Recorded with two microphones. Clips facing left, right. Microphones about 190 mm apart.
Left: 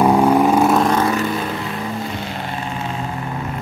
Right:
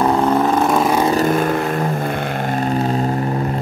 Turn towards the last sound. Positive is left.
turn(degrees=-40)  # may be behind; listen again after turning